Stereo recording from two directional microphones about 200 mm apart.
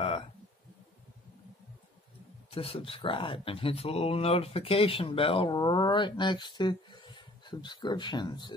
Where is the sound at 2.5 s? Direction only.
25° left (ahead or behind).